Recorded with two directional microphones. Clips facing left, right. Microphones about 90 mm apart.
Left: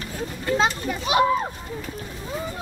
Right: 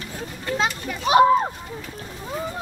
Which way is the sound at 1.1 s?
40° right (ahead or behind).